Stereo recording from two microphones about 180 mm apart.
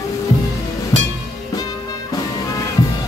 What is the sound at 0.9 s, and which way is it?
Music, 20° left (ahead or behind).